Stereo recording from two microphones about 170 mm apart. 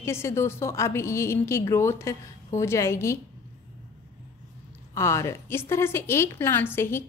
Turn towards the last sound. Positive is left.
turn(degrees=15)  # may be behind; listen again after turning